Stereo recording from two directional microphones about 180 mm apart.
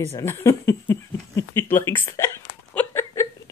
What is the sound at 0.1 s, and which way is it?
Speech, 15° left (ahead or behind).